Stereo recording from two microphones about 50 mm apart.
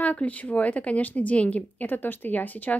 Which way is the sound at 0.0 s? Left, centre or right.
Left.